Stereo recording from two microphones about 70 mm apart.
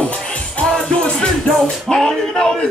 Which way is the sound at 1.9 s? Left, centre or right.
Centre.